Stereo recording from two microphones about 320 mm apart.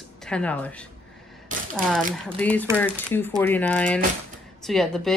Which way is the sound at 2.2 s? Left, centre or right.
Centre.